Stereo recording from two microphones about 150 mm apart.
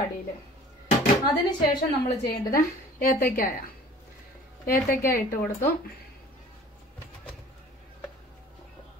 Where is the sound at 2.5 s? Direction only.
70° left (ahead or behind).